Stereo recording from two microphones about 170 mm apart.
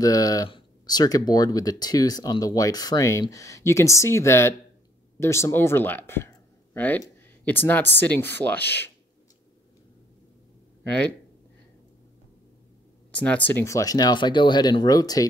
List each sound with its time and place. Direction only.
0.0 s speech: 20° left (ahead or behind)
10.8 s speech: 5° left (ahead or behind)
13.1 s speech: 10° left (ahead or behind)